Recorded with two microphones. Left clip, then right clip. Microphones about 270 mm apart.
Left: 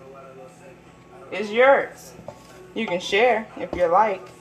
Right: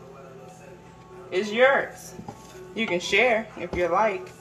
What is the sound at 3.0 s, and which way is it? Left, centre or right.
Speech, left.